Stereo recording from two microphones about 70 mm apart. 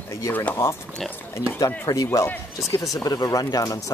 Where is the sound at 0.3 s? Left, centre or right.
Left.